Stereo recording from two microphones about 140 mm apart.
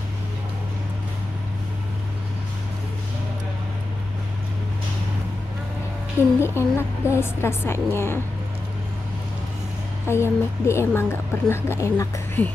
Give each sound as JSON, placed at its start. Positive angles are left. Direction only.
{"t": 6.4, "sound": "a woman's voice", "side_deg": 15}
{"t": 10.0, "sound": "a woman's voice", "side_deg": 20}